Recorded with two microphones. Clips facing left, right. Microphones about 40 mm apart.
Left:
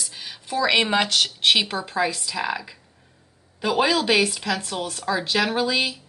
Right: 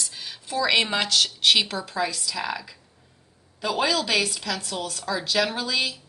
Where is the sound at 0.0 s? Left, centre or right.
Centre.